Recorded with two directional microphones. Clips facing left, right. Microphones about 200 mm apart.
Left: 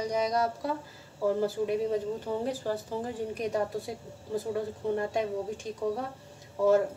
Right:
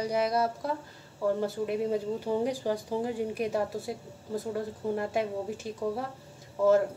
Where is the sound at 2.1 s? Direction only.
15° right (ahead or behind).